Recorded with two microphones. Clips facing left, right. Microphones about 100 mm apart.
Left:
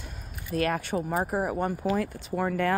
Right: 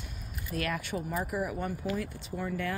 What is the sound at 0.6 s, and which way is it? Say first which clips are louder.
Speech: left 6 dB; 35° left (ahead or behind).